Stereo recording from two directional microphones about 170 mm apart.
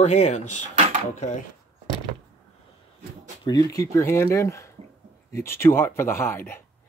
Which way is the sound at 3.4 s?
20° left (ahead or behind).